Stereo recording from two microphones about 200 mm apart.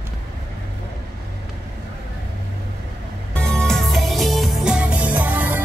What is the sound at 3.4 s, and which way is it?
Music, 5° left (ahead or behind).